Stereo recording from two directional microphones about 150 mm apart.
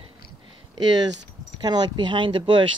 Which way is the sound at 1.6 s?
30° right (ahead or behind).